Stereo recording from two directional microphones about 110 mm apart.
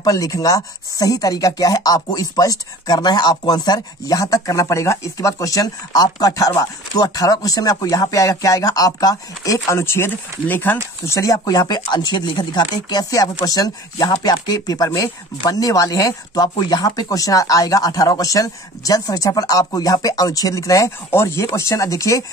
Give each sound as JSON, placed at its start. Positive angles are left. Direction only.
{"t": 0.0, "sound": "speech", "side_deg": 30}